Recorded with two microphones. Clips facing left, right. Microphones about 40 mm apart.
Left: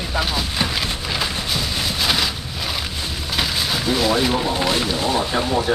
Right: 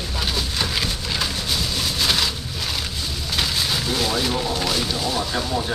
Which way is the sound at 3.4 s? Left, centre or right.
Centre.